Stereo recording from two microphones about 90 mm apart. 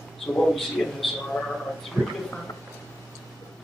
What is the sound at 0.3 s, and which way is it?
Speech, 10° left (ahead or behind).